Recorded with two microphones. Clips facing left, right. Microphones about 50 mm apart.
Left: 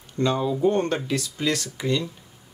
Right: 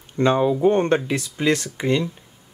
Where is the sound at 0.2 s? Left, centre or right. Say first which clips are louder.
Right 5 dB; right.